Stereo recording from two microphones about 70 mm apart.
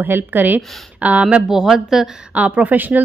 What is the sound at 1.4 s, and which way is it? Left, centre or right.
Speech, centre.